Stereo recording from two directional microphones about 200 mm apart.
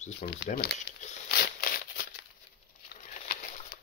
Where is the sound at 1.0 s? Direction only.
50° left (ahead or behind).